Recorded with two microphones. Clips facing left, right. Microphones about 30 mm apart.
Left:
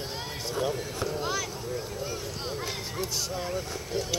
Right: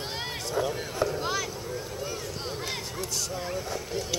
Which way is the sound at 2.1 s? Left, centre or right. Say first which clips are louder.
Even; centre.